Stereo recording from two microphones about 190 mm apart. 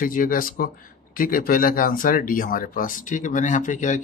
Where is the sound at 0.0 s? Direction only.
45° left (ahead or behind).